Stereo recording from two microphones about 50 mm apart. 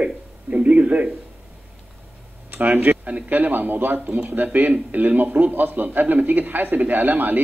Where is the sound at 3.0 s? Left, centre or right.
Right.